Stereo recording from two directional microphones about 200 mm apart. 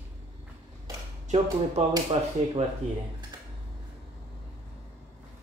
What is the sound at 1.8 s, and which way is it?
Speech, 35° right (ahead or behind).